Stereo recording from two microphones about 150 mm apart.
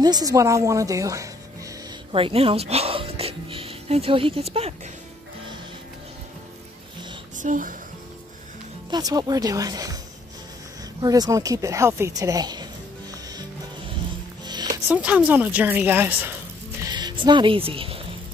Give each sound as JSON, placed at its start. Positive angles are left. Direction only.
{"t": 0.0, "sound": "speech", "side_deg": -25}
{"t": 2.1, "sound": "speech", "side_deg": -40}
{"t": 7.3, "sound": "speech", "side_deg": -60}
{"t": 8.9, "sound": "speech", "side_deg": -25}
{"t": 11.0, "sound": "speech", "side_deg": -25}
{"t": 14.4, "sound": "music", "side_deg": -30}
{"t": 14.9, "sound": "a woman's voice", "side_deg": -10}
{"t": 16.8, "sound": "speech", "side_deg": -30}